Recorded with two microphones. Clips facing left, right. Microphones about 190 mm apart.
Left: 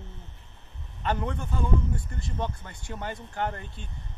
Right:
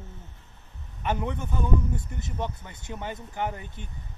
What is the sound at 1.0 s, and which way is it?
Speech, 10° right (ahead or behind).